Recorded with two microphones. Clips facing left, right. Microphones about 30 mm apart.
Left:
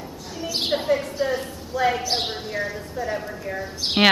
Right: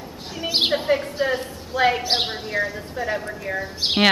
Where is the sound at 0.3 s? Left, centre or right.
Right.